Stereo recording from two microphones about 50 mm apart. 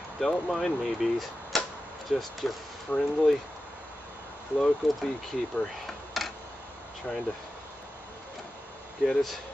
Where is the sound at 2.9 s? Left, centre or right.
Left.